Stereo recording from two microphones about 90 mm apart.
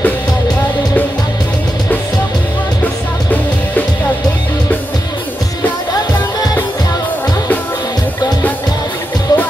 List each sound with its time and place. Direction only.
2.8 s music: 20° left (ahead or behind)
9.3 s music: 45° left (ahead or behind)